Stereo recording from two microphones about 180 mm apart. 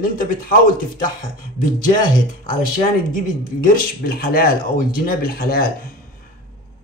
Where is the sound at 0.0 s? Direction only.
50° left (ahead or behind).